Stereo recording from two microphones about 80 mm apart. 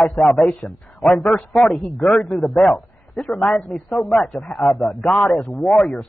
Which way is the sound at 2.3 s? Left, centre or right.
Left.